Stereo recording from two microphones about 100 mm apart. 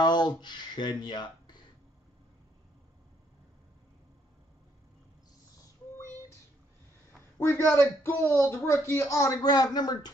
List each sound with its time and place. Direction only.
0.0 s speech: 50° left (ahead or behind)
7.1 s a man's voice: 25° left (ahead or behind); by 10.1 s 45° left (ahead or behind)